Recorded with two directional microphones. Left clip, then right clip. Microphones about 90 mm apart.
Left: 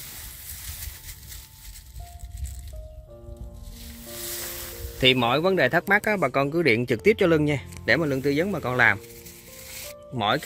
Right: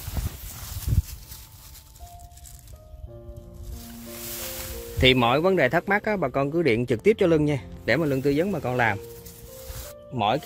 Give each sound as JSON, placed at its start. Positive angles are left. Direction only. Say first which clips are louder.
{"t": 5.0, "sound": "speech", "louder": "right 1 dB", "side_deg": -20}
{"t": 7.8, "sound": "speech", "louder": "even", "side_deg": -20}
{"t": 8.5, "sound": "speech", "louder": "left 3 dB", "side_deg": -10}
{"t": 10.1, "sound": "speech", "louder": "even", "side_deg": 0}